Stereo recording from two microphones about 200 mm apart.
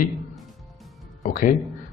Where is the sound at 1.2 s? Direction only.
40° left (ahead or behind).